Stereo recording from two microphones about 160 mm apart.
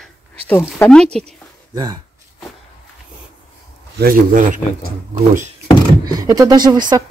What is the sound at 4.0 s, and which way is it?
Speech, 60° right (ahead or behind).